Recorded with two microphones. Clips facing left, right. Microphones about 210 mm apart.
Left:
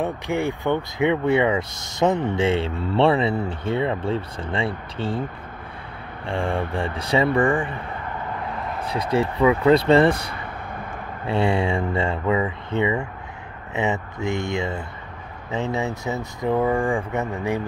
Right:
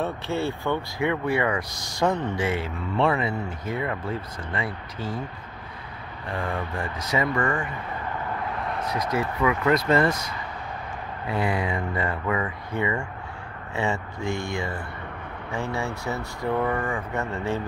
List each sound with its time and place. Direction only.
0.0 s speech: 15° left (ahead or behind)
6.2 s speech: 30° left (ahead or behind)
8.8 s speech: 30° left (ahead or behind)